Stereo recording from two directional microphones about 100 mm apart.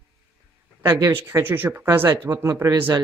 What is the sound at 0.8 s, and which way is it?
Speech, 30° right (ahead or behind).